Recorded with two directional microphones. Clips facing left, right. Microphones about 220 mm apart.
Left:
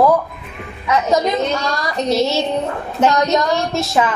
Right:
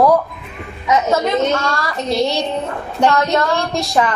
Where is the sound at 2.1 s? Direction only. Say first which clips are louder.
Left 1 dB; centre (ahead or behind).